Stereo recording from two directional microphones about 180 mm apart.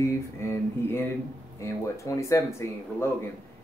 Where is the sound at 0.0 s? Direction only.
15° left (ahead or behind).